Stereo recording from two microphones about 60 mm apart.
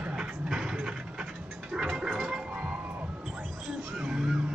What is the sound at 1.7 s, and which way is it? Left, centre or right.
Gargling, centre.